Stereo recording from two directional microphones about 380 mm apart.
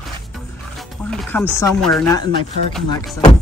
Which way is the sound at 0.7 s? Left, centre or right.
Centre.